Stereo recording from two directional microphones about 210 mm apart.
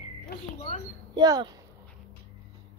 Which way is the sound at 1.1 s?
20° right (ahead or behind).